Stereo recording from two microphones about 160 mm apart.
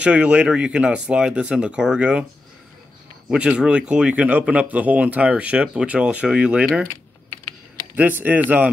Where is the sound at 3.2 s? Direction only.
5° right (ahead or behind).